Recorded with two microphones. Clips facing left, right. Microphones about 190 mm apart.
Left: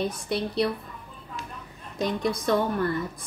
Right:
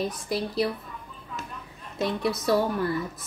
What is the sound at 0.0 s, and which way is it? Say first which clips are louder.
Speech: left 1 dB; centre (ahead or behind).